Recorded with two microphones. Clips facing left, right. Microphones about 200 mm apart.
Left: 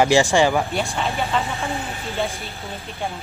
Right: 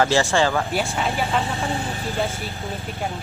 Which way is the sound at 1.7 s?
30° right (ahead or behind).